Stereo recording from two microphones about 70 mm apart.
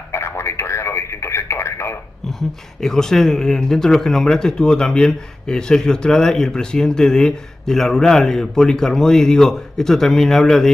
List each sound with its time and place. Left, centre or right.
0.1 s radio: left
2.8 s speech: centre